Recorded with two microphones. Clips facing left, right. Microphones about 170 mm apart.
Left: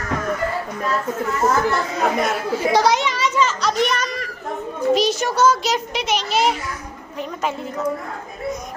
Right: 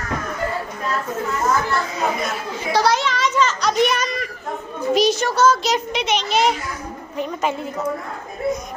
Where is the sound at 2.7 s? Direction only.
20° left (ahead or behind); by 5.3 s centre (ahead or behind).